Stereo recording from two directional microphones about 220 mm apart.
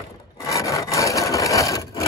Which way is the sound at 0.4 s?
15° left (ahead or behind).